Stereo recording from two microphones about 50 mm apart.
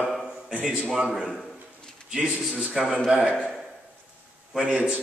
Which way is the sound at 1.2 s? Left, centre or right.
Centre.